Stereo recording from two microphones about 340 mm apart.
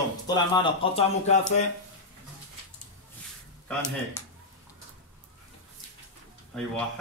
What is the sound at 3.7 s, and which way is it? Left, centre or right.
Speech, centre.